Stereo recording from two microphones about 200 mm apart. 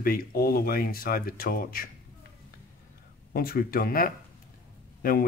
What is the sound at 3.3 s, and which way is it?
Speech, 50° left (ahead or behind).